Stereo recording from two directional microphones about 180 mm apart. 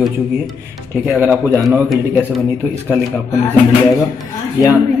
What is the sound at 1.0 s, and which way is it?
Speech, 5° right (ahead or behind).